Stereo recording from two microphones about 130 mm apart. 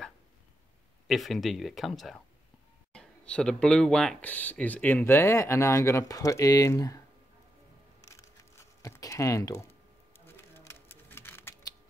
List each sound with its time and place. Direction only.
1.0 s speech: centre (ahead or behind); by 7.0 s 25° left (ahead or behind)
8.1 s a sound: 20° left (ahead or behind)
10.1 s typewriter: 15° left (ahead or behind)